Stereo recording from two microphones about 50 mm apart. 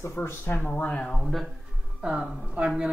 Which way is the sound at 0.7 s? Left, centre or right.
Left.